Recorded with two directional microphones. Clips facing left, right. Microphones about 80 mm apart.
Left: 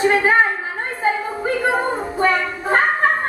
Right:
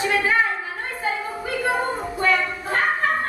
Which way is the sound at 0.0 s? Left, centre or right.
Left.